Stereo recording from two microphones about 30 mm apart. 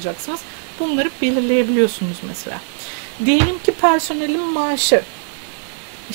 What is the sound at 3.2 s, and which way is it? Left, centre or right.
Speech, left.